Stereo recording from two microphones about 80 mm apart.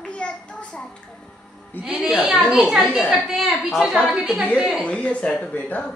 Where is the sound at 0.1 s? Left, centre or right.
Centre.